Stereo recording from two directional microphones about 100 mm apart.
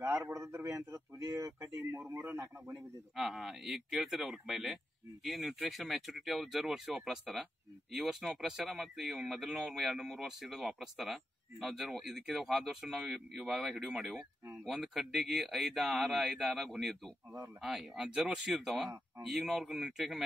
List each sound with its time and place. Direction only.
0.2 s speech: 30° right (ahead or behind)
2.0 s radio: 20° right (ahead or behind)
3.2 s speech: centre (ahead or behind)